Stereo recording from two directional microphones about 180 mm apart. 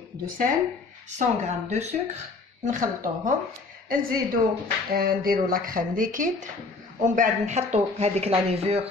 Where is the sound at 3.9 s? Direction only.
50° right (ahead or behind).